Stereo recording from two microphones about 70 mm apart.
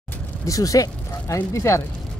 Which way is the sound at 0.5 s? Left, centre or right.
Left.